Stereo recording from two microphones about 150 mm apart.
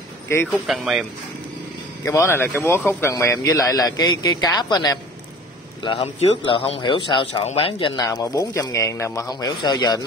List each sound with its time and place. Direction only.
0.5 s speech: centre (ahead or behind)
2.0 s a man's voice: 20° left (ahead or behind)
5.9 s speech: 40° left (ahead or behind)
8.0 s a man's voice: 25° left (ahead or behind)